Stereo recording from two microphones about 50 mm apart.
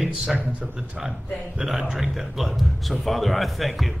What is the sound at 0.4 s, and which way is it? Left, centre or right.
Speech, right.